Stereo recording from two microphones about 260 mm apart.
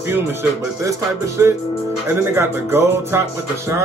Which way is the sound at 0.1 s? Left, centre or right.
Centre.